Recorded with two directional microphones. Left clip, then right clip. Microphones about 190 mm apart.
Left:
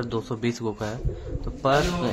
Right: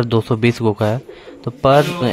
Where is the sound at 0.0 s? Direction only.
40° right (ahead or behind).